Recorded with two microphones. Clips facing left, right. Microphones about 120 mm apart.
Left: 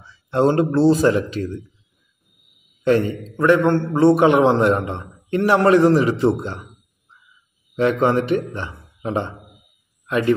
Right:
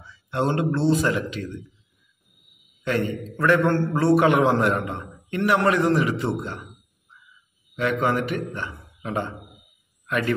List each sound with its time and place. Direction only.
0.0 s speech: 35° left (ahead or behind)
2.8 s a man's voice: 35° left (ahead or behind)
3.3 s a man's voice: 20° left (ahead or behind)
7.7 s a man's voice: 30° left (ahead or behind)